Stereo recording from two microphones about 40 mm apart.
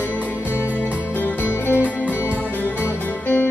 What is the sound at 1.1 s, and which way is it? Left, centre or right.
Music, left.